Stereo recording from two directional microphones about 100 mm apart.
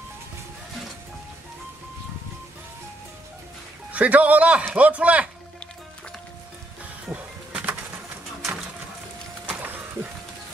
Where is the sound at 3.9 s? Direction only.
15° right (ahead or behind).